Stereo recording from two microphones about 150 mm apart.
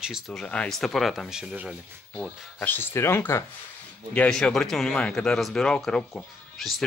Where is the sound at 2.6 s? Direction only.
15° left (ahead or behind).